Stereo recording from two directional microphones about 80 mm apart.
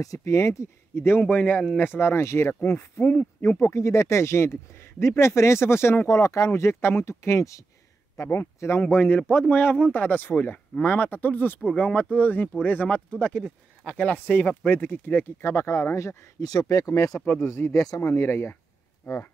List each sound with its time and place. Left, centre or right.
0.0 s speech: left
1.3 s speech: centre
3.6 s speech: left
8.9 s speech: left
16.3 s speech: left
17.7 s speech: left
18.1 s speech: left